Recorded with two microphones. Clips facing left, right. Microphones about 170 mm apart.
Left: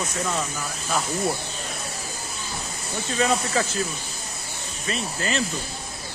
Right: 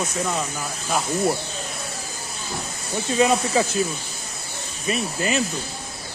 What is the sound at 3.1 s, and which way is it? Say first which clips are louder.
Speech: right 4 dB; 15° right (ahead or behind).